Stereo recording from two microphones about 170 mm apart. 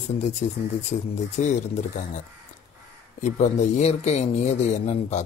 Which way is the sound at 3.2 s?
40° left (ahead or behind).